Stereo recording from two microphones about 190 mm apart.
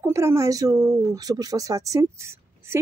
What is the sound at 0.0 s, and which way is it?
Speech, 15° right (ahead or behind).